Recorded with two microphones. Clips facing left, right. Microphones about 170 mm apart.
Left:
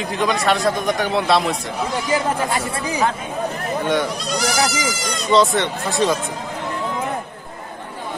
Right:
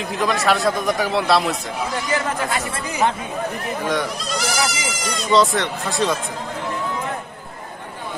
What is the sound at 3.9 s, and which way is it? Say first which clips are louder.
A man's voice: left 3 dB; centre (ahead or behind).